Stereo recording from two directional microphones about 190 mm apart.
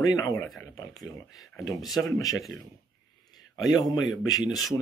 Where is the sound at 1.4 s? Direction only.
Centre (ahead or behind).